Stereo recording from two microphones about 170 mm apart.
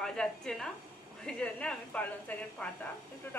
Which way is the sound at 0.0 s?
5° left (ahead or behind).